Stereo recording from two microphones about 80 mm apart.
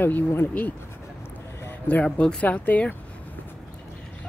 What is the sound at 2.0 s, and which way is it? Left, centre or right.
Speech, centre.